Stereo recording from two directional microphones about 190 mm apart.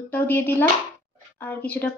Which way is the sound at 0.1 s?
10° left (ahead or behind).